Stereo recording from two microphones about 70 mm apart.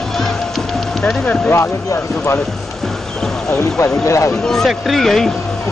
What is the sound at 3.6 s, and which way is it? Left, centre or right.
Speech, left.